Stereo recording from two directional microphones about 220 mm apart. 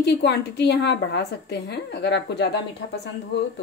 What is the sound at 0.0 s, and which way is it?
A woman's voice, 50° left (ahead or behind).